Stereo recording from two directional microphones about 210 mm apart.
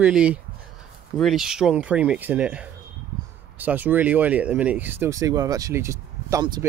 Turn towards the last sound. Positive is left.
turn(degrees=-20)  # may be behind; listen again after turning